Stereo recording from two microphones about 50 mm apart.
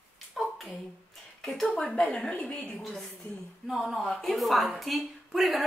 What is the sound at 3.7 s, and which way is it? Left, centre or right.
Speech, centre.